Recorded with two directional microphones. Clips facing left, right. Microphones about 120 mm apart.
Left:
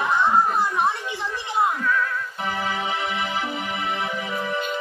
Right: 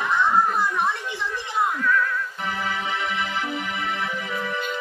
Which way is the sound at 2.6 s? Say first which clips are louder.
Even; 35° left (ahead or behind).